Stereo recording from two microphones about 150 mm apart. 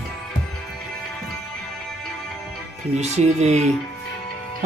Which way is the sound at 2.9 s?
50° right (ahead or behind).